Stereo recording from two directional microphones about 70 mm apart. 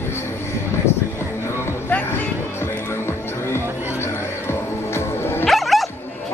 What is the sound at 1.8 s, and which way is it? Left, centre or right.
Music, left.